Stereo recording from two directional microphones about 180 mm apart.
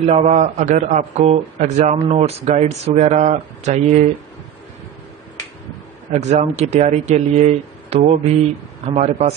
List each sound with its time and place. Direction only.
0.0 s a man's voice: 35° right (ahead or behind)
6.0 s a man's voice: 40° right (ahead or behind)